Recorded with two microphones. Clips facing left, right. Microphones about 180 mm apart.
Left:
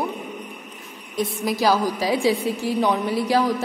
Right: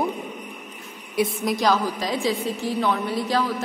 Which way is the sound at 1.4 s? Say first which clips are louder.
Left 4 dB; 5° left (ahead or behind).